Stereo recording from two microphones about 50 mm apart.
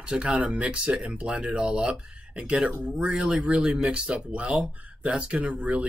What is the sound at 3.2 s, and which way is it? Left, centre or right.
Speech, centre.